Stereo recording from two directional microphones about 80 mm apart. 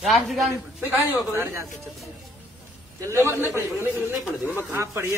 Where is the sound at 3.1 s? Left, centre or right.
Left.